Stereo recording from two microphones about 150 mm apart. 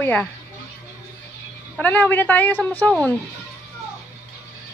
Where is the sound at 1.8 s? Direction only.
10° left (ahead or behind).